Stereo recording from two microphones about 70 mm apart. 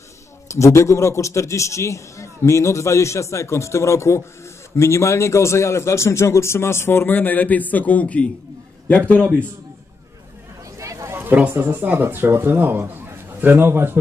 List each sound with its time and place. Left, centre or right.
0.5 s a man's voice: left; by 9.3 s centre
10.8 s a sound: right
11.6 s a man's voice: right